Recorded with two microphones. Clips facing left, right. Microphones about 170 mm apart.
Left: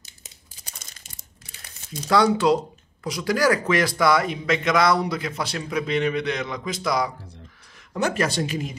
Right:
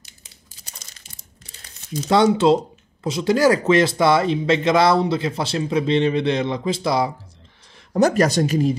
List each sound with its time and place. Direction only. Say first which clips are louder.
2.0 s speech: right 3 dB; 25° right (ahead or behind)
7.9 s speech: right 7 dB; 40° right (ahead or behind)